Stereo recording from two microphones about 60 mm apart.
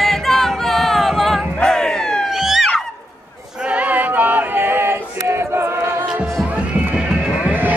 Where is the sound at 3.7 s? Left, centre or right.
Right.